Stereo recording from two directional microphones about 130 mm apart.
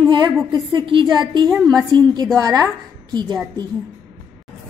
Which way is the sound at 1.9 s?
35° right (ahead or behind).